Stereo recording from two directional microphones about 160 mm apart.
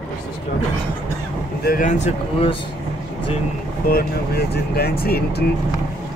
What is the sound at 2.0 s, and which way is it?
Speech, 35° left (ahead or behind).